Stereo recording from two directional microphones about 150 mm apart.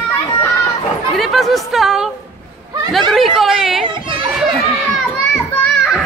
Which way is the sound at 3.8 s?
35° right (ahead or behind).